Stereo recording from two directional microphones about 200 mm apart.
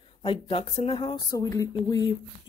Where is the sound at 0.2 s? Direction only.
25° left (ahead or behind).